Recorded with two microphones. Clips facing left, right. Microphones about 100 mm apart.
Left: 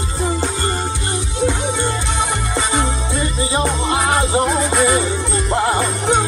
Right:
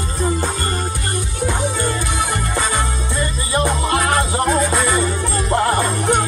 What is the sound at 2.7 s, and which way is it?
Music, 20° left (ahead or behind).